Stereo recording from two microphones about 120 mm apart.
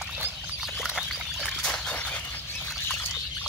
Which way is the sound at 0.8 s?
Centre (ahead or behind).